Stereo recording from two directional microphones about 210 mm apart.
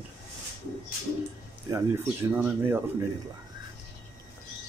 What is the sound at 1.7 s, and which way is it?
Speech, 15° right (ahead or behind).